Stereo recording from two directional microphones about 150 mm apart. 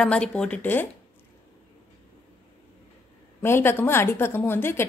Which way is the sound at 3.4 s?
15° left (ahead or behind).